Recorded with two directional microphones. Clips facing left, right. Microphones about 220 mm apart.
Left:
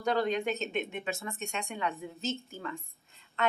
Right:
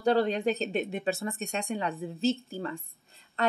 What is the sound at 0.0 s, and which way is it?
Speech, 30° right (ahead or behind).